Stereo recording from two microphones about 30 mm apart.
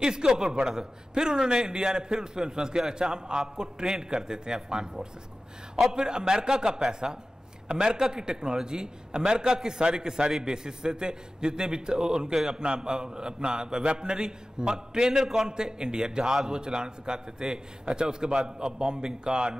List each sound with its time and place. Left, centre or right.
0.0 s a man's voice: right